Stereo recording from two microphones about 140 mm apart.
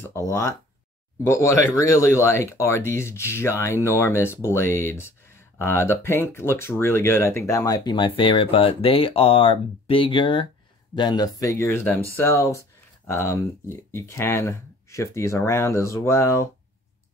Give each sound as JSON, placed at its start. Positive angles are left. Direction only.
{"t": 0.3, "sound": "speech", "side_deg": 20}